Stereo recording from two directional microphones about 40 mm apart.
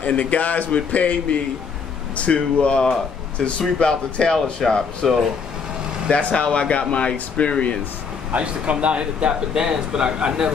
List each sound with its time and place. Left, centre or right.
0.0 s speech: left; by 4.8 s centre
6.0 s speech: left
8.3 s speech: right